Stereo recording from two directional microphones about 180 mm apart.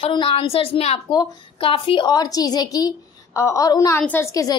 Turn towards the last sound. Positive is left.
turn(degrees=20)  # may be behind; listen again after turning